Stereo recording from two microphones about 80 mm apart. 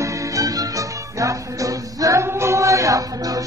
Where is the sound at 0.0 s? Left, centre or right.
Right.